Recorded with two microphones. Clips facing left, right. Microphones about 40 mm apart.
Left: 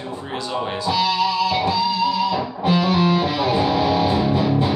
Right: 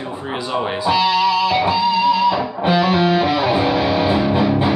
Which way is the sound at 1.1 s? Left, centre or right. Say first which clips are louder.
Right 4 dB; right.